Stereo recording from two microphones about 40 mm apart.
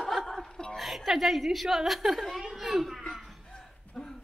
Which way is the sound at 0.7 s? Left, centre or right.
Centre.